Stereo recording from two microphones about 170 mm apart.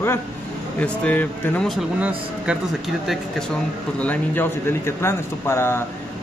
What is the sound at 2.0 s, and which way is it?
Speech, 10° right (ahead or behind).